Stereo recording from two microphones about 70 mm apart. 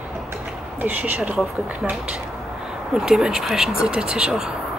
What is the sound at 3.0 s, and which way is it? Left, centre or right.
Speech, centre.